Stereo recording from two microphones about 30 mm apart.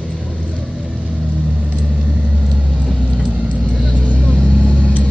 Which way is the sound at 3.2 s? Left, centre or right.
Right.